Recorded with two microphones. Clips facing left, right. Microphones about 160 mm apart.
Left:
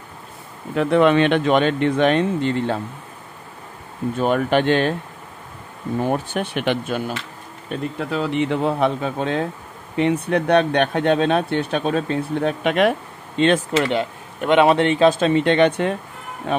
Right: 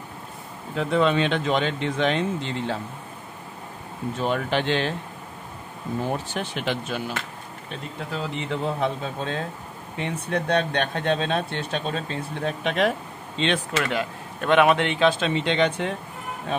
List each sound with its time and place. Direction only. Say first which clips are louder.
0.7 s speech: left 6 dB; 65° left (ahead or behind)
4.2 s speech: left 6 dB; 55° left (ahead or behind)
6.0 s speech: left 8 dB; 55° left (ahead or behind)
8.1 s speech: left 8 dB; 70° left (ahead or behind)
13.4 s speech: left 7 dB; 45° left (ahead or behind)
14.4 s a man's voice: left 3 dB; 20° left (ahead or behind)
14.7 s speech: left 5 dB; 35° left (ahead or behind); by 15.9 s 55° left (ahead or behind)